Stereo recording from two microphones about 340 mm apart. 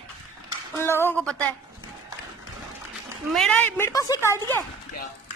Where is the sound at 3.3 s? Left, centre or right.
Centre.